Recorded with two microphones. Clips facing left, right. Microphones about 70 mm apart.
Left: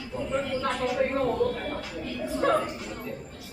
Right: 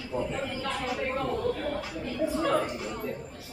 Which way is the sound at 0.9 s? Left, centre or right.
Left.